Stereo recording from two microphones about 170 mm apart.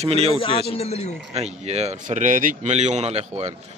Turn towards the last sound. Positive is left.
turn(degrees=-40)  # may be behind; listen again after turning